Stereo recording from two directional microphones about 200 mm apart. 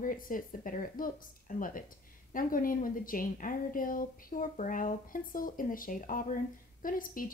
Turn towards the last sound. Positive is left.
turn(degrees=45)  # may be behind; listen again after turning